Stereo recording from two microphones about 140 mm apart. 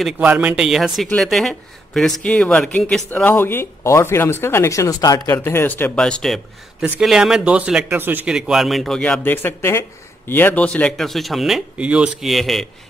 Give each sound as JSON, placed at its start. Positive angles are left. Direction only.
{"t": 0.0, "sound": "speech", "side_deg": -10}